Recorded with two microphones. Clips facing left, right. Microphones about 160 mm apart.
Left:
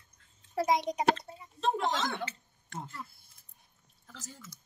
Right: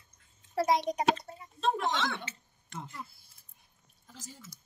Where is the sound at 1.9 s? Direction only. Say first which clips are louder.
Even; 35° left (ahead or behind).